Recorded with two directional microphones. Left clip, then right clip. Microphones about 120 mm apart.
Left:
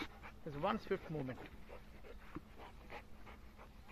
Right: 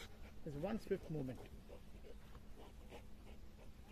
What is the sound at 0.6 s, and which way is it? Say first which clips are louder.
Speech: left 5 dB; 45° right (ahead or behind).